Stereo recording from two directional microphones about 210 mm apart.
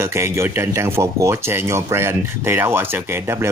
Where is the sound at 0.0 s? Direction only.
10° right (ahead or behind).